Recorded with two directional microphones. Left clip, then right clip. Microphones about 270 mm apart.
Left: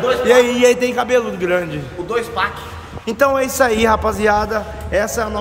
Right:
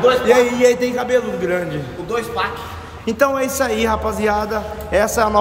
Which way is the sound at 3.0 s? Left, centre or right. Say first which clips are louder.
Left 2 dB; centre.